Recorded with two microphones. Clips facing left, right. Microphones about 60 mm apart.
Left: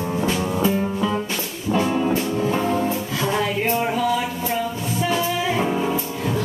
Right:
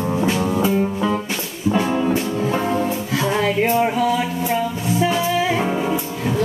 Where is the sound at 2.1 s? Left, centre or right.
Right.